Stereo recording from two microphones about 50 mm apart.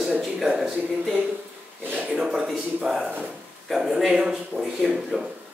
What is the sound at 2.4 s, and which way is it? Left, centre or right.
A man's voice, centre.